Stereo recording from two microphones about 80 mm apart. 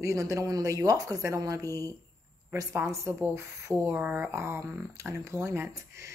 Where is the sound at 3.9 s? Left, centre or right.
Centre.